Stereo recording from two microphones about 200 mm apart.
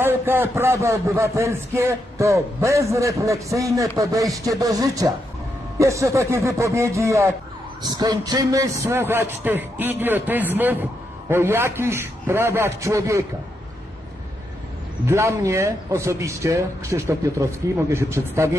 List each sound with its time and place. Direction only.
0.0 s a man's voice: 10° right (ahead or behind)
15.0 s a man's voice: 15° right (ahead or behind)